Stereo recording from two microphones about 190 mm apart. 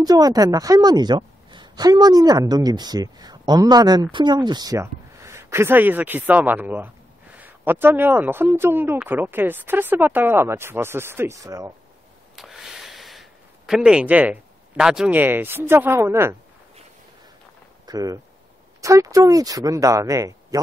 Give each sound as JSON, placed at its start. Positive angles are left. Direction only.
{"t": 0.0, "sound": "a woman's voice", "side_deg": -20}
{"t": 12.4, "sound": "gasp", "side_deg": 0}
{"t": 17.8, "sound": "a woman's voice", "side_deg": -20}